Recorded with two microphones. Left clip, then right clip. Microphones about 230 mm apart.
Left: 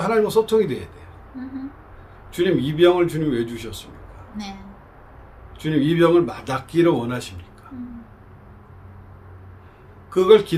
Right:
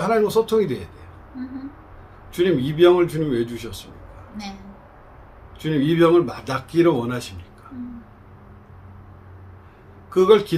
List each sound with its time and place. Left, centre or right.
0.0 s speech: centre
2.3 s speech: centre
5.6 s speech: centre
10.0 s speech: centre